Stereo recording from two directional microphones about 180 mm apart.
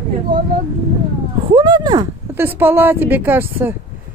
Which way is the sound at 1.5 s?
25° right (ahead or behind).